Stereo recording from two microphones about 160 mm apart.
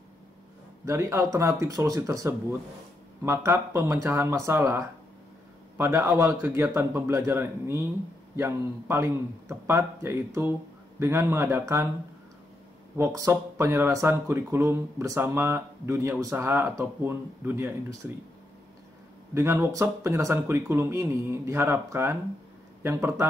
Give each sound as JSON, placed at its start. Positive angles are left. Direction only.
{"t": 0.8, "sound": "speech", "side_deg": -15}
{"t": 12.9, "sound": "speech", "side_deg": -20}
{"t": 19.3, "sound": "speech", "side_deg": -15}